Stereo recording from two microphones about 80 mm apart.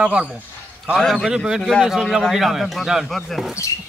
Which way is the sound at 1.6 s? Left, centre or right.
Centre.